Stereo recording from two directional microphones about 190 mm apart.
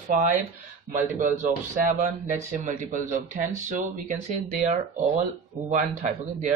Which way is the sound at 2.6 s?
40° right (ahead or behind).